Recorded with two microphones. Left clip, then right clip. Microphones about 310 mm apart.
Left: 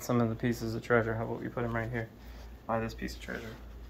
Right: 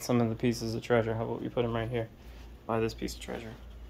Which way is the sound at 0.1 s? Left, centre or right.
Right.